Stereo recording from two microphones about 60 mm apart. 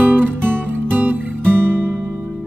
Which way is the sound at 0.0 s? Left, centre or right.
Right.